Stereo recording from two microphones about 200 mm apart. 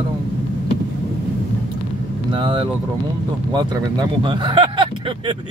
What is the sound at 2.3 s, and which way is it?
Speech, 25° right (ahead or behind).